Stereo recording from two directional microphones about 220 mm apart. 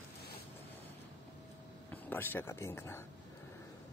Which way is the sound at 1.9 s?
10° left (ahead or behind).